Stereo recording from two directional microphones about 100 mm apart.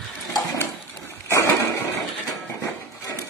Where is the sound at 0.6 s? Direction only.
25° left (ahead or behind).